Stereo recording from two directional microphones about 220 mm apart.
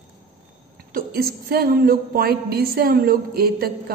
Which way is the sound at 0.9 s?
45° right (ahead or behind).